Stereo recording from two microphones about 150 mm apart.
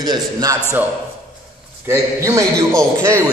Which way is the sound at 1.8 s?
20° right (ahead or behind).